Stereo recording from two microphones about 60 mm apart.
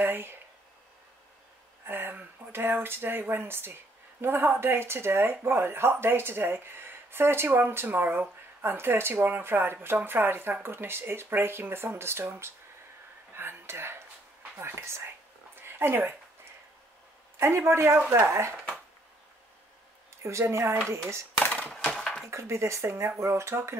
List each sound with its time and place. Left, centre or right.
0.0 s speech: right
1.9 s speech: right
13.3 s whispering: right
14.6 s speech: right
15.5 s dog: right
17.4 s speech: right
20.2 s speech: right
21.7 s coin: centre
22.3 s speech: right